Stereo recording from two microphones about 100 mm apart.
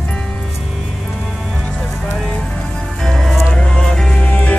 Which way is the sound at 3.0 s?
Centre (ahead or behind).